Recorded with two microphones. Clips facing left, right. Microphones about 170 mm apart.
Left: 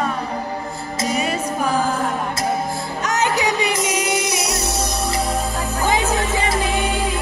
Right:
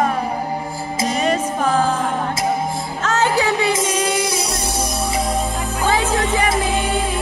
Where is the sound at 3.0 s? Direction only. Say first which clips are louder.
Right 2 dB; 15° left (ahead or behind).